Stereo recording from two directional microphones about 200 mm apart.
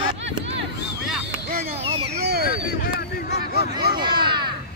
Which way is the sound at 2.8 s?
50° left (ahead or behind).